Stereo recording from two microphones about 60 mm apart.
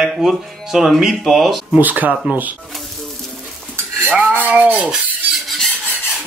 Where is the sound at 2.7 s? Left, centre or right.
Centre.